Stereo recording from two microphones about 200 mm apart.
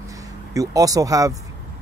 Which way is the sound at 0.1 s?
15° right (ahead or behind).